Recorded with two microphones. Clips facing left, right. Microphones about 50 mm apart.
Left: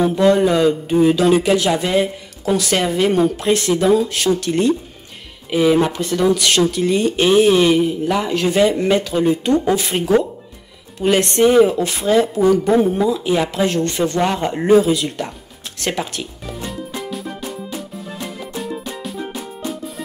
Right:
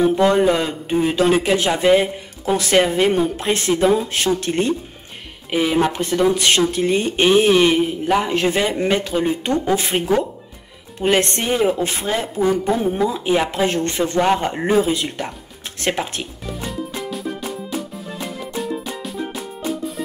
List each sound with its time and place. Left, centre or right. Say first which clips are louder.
0.0 s speech: left 1 dB; right
5.5 s speech: left 3 dB; centre
16.4 s music: right 3 dB; centre